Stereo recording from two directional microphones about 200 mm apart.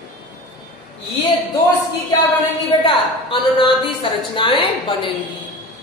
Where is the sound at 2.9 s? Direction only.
25° left (ahead or behind).